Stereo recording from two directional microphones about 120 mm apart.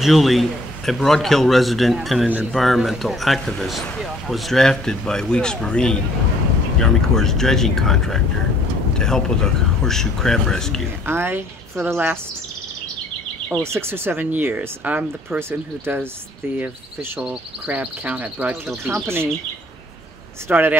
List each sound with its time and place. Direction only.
0.0 s speech: centre (ahead or behind)
11.1 s speech: 20° right (ahead or behind)
13.6 s speech: 20° right (ahead or behind)
18.7 s speech: centre (ahead or behind)
20.4 s speech: 15° right (ahead or behind)